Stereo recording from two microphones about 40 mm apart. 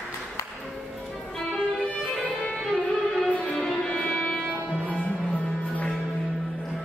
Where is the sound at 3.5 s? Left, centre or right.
Centre.